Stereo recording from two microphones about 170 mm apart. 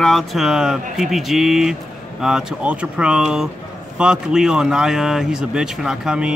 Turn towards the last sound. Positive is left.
turn(degrees=-5)  # may be behind; listen again after turning